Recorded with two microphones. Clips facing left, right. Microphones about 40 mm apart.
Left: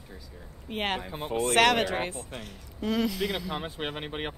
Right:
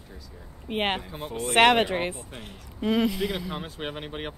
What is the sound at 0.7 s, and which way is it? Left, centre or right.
Speech, right.